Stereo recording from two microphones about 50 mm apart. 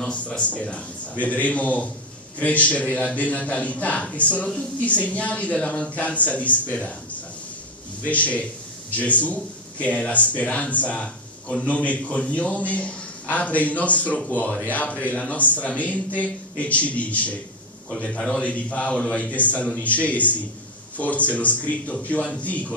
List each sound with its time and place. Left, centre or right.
0.0 s speech: left